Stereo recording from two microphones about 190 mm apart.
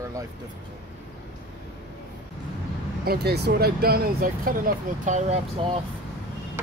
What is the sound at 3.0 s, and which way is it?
Speech, 60° right (ahead or behind).